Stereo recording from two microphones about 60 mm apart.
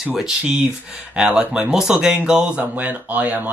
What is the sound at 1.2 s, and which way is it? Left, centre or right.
Speech, centre.